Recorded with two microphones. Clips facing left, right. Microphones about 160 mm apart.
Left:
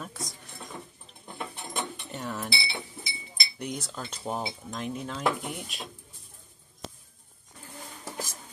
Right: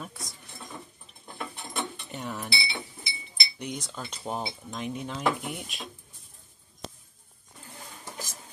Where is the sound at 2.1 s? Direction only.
Centre (ahead or behind).